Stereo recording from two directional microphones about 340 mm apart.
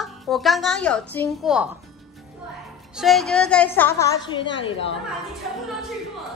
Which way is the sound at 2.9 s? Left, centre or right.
Centre.